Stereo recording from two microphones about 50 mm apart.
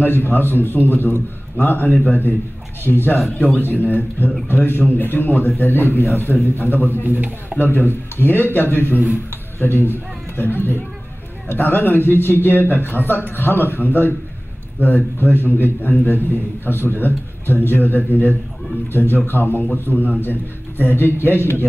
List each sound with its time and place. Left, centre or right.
0.0 s a man's voice: left
7.0 s speech: right
7.5 s a man's voice: left